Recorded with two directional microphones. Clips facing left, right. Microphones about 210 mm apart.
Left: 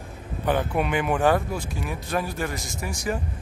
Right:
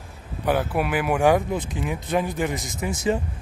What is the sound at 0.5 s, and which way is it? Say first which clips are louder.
Speech: right 1 dB; 5° right (ahead or behind).